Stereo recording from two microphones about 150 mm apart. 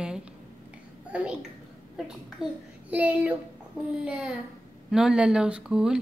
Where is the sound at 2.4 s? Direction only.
5° right (ahead or behind).